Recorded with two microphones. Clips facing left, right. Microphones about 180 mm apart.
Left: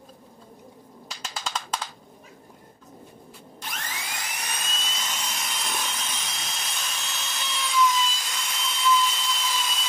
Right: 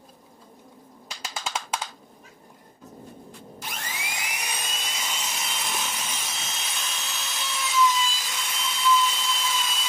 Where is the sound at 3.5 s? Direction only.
10° right (ahead or behind).